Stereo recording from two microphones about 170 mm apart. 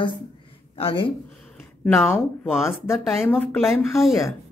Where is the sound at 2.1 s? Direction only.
15° left (ahead or behind).